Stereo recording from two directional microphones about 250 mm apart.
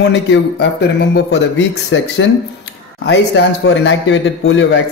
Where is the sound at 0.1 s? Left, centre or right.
Left.